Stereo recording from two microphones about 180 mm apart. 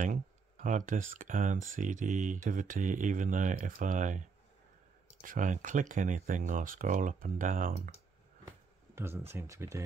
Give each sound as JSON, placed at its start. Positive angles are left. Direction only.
{"t": 0.0, "sound": "speech", "side_deg": -45}
{"t": 8.9, "sound": "speech", "side_deg": -15}